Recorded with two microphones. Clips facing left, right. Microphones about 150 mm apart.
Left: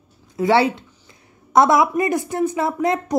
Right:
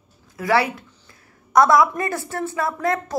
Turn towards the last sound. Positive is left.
turn(degrees=20)  # may be behind; listen again after turning